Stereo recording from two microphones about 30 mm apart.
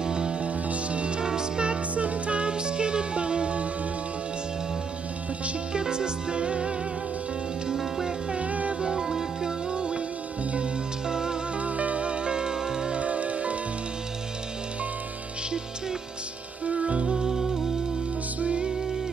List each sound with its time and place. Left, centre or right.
0.0 s music: right
0.4 s music: right
2.0 s music: right
5.7 s music: right
7.6 s music: right
8.4 s music: right
8.8 s music: right
9.7 s music: right
11.1 s music: right
11.6 s music: right
12.4 s music: right
12.9 s music: right
16.6 s music: right